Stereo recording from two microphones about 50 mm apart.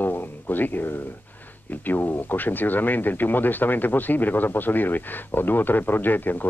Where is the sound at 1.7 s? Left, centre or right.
Left.